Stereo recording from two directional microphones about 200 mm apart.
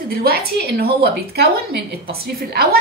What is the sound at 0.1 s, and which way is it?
A woman's voice, 50° right (ahead or behind).